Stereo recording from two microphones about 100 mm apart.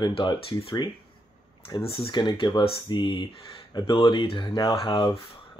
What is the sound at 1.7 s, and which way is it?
Speech, 70° left (ahead or behind).